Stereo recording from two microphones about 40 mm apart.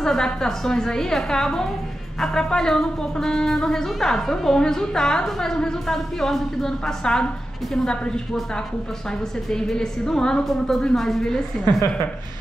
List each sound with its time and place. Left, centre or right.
0.0 s speech: centre
9.5 s speech: centre